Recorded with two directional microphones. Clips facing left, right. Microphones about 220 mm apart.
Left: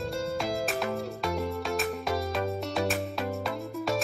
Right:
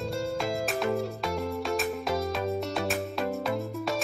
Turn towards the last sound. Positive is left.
turn(degrees=0)  # may be behind; listen again after turning